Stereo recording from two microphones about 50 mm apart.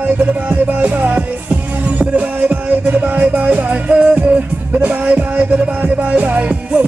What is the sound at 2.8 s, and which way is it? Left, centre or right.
Music, right.